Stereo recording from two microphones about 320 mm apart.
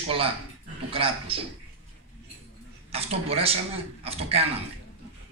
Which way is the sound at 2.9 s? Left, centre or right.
Centre.